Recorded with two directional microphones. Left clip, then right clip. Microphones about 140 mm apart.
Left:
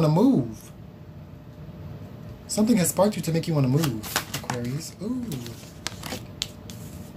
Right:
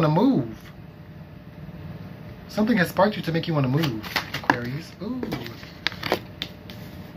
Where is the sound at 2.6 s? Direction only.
50° left (ahead or behind).